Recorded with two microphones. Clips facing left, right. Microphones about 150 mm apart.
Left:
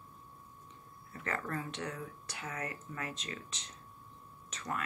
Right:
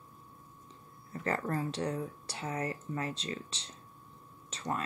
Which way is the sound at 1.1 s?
35° right (ahead or behind).